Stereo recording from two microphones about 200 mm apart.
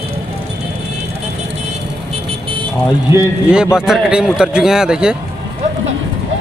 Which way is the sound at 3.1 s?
5° right (ahead or behind).